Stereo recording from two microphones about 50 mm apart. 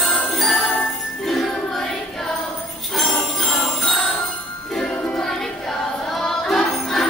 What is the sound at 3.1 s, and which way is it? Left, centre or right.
Jingle bell, left.